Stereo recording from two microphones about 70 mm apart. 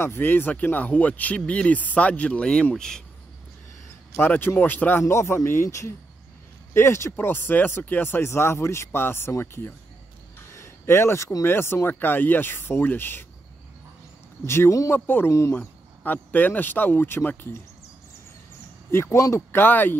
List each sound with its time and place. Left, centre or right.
0.0 s speech: left; by 3.0 s centre
4.2 s speech: left
5.0 s speech: left
10.5 s a sound: left
11.4 s speech: left
14.4 s speech: left
15.0 s speech: left
18.9 s speech: left
19.1 s speech: left
19.5 s speech: left